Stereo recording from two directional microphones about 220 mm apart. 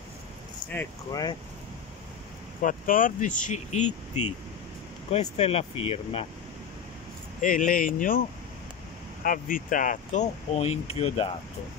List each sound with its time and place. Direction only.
0.7 s speech: 10° left (ahead or behind)
2.6 s speech: 40° left (ahead or behind)
5.1 s speech: 30° left (ahead or behind)
7.3 s speech: 35° left (ahead or behind)
9.2 s speech: 40° left (ahead or behind)